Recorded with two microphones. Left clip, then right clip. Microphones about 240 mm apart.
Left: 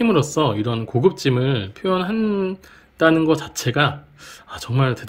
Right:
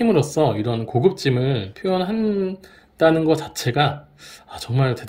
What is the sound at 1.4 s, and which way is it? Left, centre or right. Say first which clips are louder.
Speech: left 1 dB; left.